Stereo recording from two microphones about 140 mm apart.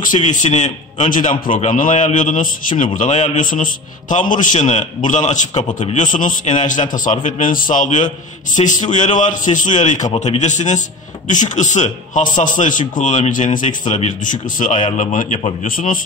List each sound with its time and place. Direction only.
0.0 s a man's voice: 60° left (ahead or behind)
1.6 s a man's voice: 65° left (ahead or behind)
5.9 s a man's voice: 70° left (ahead or behind)
15.6 s a man's voice: 80° left